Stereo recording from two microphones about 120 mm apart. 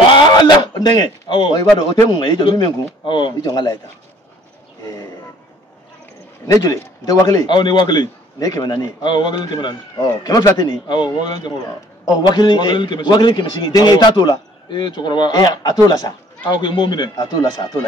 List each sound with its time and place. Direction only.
0.1 s a man's voice: 35° left (ahead or behind)
6.4 s a man's voice: 25° left (ahead or behind)